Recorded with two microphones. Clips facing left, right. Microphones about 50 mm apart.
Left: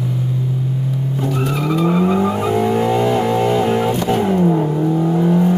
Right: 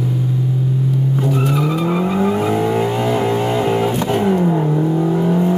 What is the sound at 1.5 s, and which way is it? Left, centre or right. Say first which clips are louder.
Vehicle: left 1 dB; centre.